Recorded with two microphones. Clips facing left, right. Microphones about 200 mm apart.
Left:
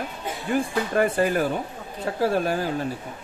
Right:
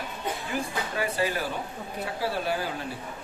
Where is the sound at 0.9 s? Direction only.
50° left (ahead or behind).